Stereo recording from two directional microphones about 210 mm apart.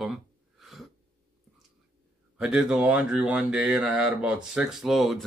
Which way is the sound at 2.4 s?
5° right (ahead or behind).